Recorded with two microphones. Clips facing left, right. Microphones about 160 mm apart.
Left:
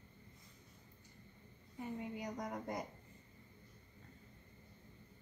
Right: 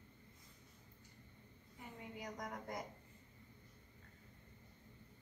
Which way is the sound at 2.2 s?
25° left (ahead or behind).